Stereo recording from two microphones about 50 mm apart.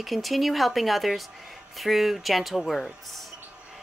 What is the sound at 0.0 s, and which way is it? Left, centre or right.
Speech, centre.